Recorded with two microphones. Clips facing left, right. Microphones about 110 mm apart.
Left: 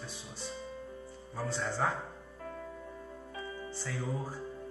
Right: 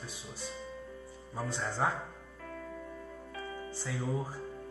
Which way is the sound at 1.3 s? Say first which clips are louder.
Left 1 dB; 15° right (ahead or behind).